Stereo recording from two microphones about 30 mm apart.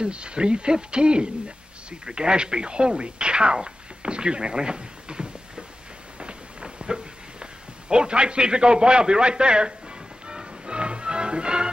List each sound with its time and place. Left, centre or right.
0.0 s a man's voice: right
6.1 s a sound: right
7.9 s a man's voice: right
10.2 s music: right